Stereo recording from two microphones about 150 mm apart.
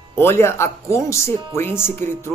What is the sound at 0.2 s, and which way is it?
Speech, 15° left (ahead or behind).